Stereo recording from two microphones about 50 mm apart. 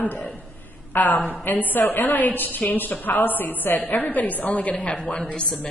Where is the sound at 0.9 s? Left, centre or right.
Left.